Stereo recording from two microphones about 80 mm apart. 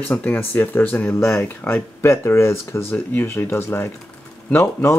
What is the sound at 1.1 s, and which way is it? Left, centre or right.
Speech, left.